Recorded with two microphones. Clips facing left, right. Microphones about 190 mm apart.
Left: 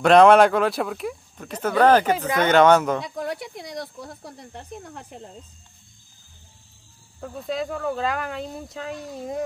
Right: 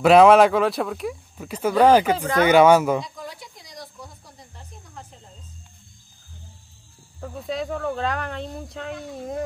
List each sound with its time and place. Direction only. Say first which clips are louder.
0.0 s speech: right 1 dB; 5° right (ahead or behind)
2.1 s speech: right 2 dB; 10° left (ahead or behind)
2.4 s speech: right 2 dB; 10° right (ahead or behind)
3.0 s speech: left 6 dB; 65° left (ahead or behind)
7.2 s speech: left 1 dB; centre (ahead or behind)